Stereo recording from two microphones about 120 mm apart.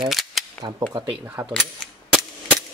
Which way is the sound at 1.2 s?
20° right (ahead or behind).